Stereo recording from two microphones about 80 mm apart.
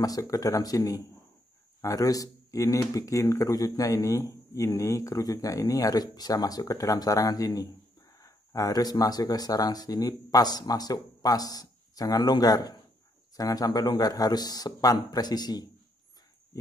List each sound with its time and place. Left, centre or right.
0.0 s speech: left